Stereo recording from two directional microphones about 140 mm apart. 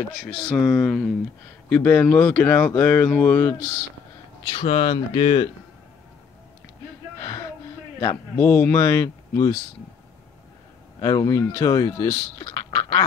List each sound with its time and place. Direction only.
0.6 s speech: centre (ahead or behind)
1.7 s speech: 10° left (ahead or behind)
4.5 s speech: 40° left (ahead or behind)
7.2 s gasp: 25° left (ahead or behind)
8.0 s speech: 20° left (ahead or behind)
11.0 s speech: 25° left (ahead or behind)